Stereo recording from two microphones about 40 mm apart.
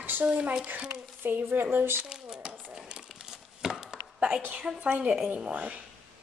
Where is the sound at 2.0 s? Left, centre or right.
Right.